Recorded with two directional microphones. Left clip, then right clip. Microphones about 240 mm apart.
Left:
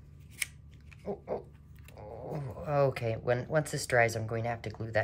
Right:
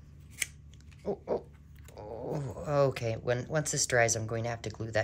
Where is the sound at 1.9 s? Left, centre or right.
Centre.